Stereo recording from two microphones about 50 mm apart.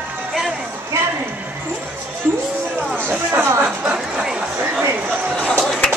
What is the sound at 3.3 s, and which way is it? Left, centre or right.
Music, right.